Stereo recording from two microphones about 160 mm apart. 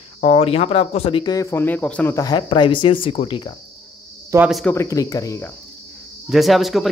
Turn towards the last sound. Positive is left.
turn(degrees=0)  # may be behind; listen again after turning